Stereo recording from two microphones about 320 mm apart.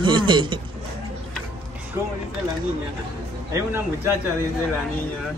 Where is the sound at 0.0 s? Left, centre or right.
Centre.